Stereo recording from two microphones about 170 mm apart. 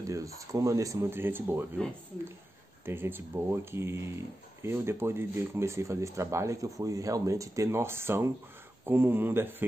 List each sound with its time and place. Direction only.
0.0 s speech: 20° right (ahead or behind)
2.8 s speech: 15° right (ahead or behind)